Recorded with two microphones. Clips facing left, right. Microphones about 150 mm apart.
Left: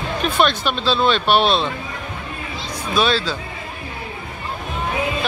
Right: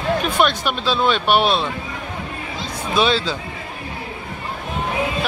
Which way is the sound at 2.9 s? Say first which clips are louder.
Right 1 dB; 20° right (ahead or behind).